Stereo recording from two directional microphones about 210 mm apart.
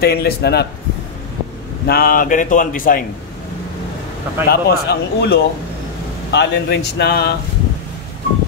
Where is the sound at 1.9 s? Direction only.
45° left (ahead or behind).